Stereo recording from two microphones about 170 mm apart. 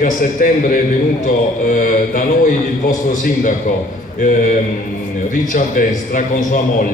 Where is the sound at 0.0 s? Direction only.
55° left (ahead or behind).